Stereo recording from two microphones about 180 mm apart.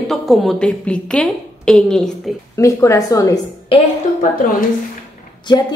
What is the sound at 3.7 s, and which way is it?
Speech, 30° left (ahead or behind).